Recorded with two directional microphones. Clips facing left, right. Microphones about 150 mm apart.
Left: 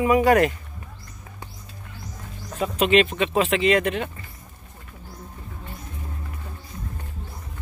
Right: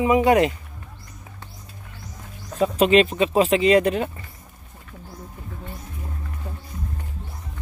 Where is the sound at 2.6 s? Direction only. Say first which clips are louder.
Right 3 dB; 35° right (ahead or behind).